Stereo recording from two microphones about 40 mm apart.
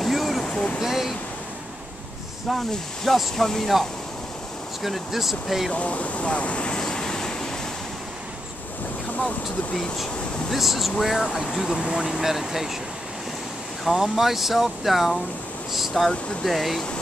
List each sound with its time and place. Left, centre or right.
0.0 s a sound: centre
0.7 s speech: centre
3.2 s speech: centre
4.8 s speech: centre
5.7 s speech: left
6.8 s vehicle: centre
10.5 s speech: centre
11.7 s speech: centre
13.8 s speech: centre